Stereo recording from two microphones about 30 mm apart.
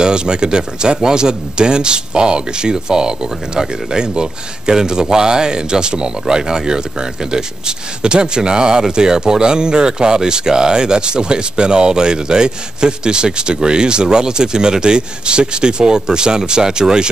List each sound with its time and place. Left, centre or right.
0.0 s speech: right